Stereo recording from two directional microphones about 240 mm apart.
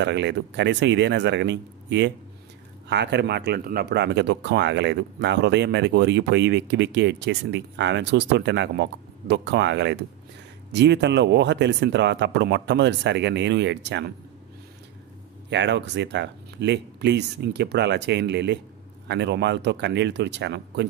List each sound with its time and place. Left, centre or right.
0.0 s speech: right
15.5 s speech: right